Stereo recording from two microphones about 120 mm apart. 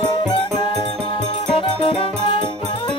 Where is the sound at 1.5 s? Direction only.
50° left (ahead or behind).